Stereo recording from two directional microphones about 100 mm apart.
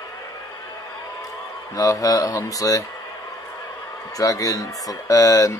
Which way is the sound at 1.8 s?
35° left (ahead or behind).